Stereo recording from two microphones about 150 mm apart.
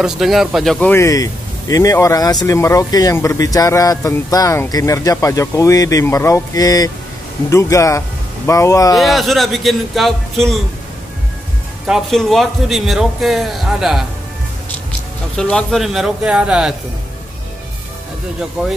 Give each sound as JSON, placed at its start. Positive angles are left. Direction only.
{"t": 0.0, "sound": "a man's voice", "side_deg": 0}
{"t": 1.0, "sound": "speech", "side_deg": 25}
{"t": 8.9, "sound": "a man's voice", "side_deg": 0}
{"t": 11.9, "sound": "a man's voice", "side_deg": 0}
{"t": 18.6, "sound": "a man's voice", "side_deg": -5}